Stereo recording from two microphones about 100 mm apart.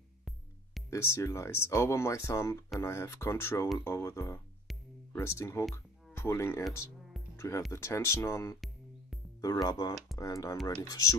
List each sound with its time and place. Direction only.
0.8 s speech: 30° left (ahead or behind)
9.4 s speech: 40° left (ahead or behind)